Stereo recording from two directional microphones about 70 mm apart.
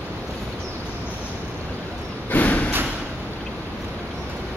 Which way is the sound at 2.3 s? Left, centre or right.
Left.